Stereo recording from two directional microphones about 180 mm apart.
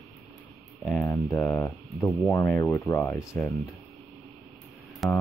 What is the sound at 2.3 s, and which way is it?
Speech, 15° left (ahead or behind).